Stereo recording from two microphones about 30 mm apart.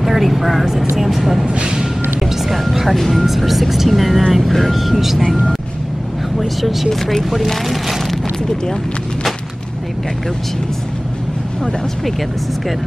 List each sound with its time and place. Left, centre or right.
0.0 s speech: centre
1.5 s speech: right
2.1 s music: centre
2.6 s speech: centre
6.9 s speech: centre
7.6 s a sound: centre